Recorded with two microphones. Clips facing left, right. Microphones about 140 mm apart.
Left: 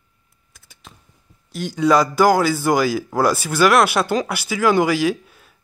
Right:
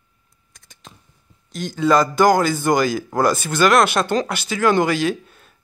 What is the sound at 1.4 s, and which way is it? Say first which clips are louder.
A man's voice: left 1 dB; 10° left (ahead or behind).